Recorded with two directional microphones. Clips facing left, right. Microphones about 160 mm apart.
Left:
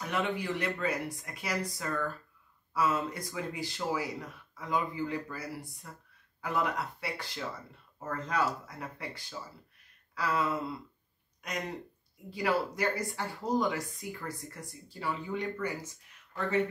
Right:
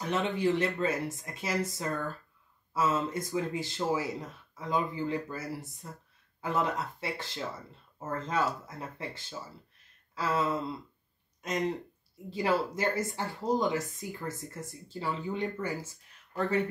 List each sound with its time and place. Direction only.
0.0 s speech: 25° right (ahead or behind)